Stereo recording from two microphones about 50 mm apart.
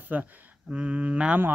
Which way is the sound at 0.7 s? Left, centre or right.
Right.